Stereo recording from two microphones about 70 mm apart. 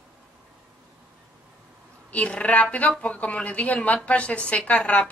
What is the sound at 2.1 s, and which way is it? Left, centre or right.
A woman's voice, centre.